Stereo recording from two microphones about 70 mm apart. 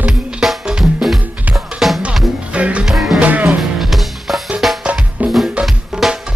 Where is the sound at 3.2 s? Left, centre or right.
Right.